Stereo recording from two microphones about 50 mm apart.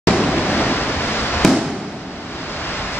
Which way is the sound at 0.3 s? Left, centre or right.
Left.